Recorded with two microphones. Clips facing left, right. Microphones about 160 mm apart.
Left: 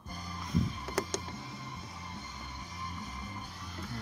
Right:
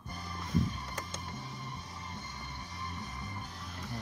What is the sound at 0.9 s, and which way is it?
Power windows, 85° left.